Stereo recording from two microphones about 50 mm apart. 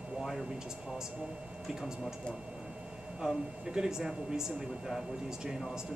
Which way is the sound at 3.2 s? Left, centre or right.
Centre.